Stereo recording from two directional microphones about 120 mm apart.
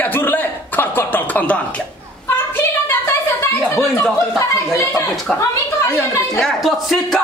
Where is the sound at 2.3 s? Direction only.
20° left (ahead or behind).